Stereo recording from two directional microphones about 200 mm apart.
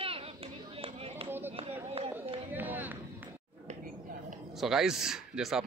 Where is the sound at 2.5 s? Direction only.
10° right (ahead or behind).